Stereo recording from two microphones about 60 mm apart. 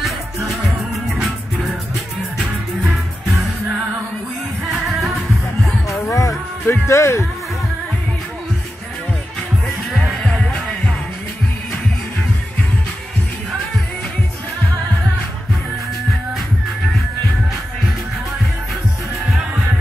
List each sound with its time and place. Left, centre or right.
0.0 s music: centre
5.0 s music: centre
6.1 s music: left